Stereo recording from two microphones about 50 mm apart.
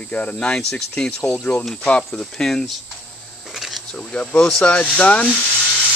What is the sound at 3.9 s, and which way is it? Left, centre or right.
Speech, centre.